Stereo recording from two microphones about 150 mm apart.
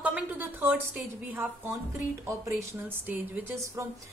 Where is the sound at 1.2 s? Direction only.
15° right (ahead or behind).